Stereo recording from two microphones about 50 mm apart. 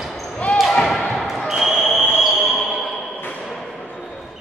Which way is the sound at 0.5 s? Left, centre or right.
Centre.